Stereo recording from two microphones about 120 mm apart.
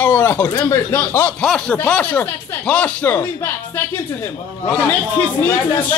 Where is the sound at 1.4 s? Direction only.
5° left (ahead or behind).